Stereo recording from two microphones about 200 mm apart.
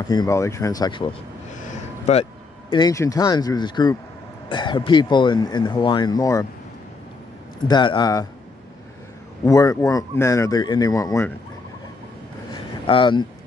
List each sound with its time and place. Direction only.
0.1 s speech: 15° left (ahead or behind)
1.6 s a sound: 35° left (ahead or behind)
2.7 s speech: 20° left (ahead or behind)
7.6 s speech: 20° left (ahead or behind)
9.4 s speech: 15° left (ahead or behind)
12.8 s speech: 25° left (ahead or behind)